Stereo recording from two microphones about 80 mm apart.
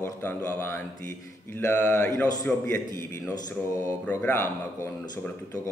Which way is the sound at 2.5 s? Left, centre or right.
Centre.